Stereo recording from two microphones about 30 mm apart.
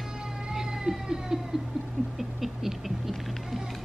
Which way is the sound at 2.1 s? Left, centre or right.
Centre.